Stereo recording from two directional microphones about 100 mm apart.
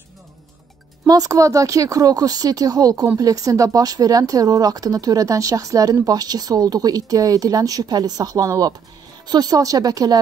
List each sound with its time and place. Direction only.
1.0 s speech: 40° right (ahead or behind)